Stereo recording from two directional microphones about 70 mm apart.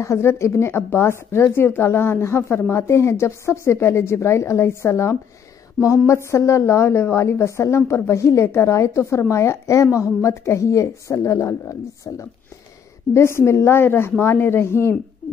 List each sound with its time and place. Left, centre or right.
0.0 s a woman's voice: left